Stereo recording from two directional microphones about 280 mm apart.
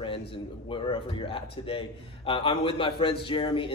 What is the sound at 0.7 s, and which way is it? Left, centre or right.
A man's voice, centre.